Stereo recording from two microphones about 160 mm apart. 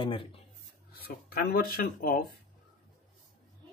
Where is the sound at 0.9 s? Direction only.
70° left (ahead or behind).